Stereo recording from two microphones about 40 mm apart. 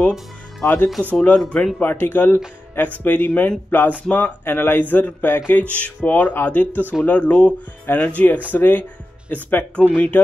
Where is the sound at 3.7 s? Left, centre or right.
Left.